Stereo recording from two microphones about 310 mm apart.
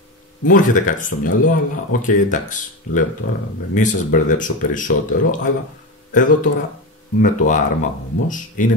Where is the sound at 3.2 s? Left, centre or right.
Left.